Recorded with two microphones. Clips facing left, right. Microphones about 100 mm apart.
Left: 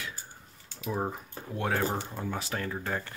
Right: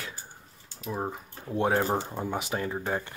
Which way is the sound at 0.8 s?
Centre (ahead or behind).